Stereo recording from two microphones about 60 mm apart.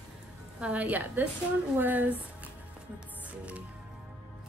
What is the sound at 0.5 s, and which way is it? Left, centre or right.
Speech, right.